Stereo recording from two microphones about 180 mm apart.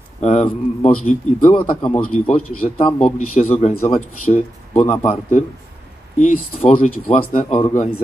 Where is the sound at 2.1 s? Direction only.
40° left (ahead or behind).